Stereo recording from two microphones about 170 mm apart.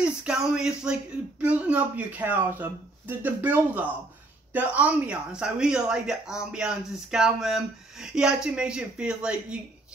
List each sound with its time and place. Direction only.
0.0 s speech: 5° right (ahead or behind)